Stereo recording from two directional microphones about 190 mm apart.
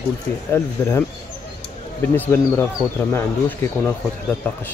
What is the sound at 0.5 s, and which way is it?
Speech, 15° left (ahead or behind).